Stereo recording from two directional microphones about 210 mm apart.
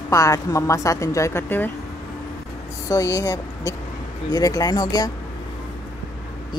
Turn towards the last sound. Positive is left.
turn(degrees=20)  # may be behind; listen again after turning